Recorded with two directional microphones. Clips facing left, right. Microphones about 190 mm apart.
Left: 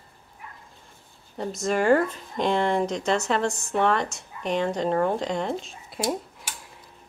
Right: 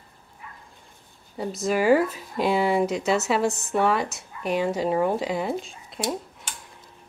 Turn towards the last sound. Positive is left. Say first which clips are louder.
# left 1 dB
turn(degrees=5)  # may be behind; listen again after turning